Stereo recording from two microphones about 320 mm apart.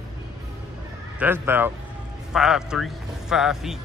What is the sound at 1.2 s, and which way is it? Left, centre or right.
Speech, centre.